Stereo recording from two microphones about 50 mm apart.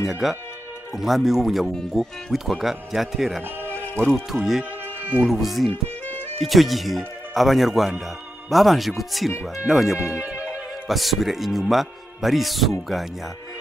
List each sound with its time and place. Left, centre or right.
0.0 s speech: centre
5.7 s music: left
6.4 s speech: centre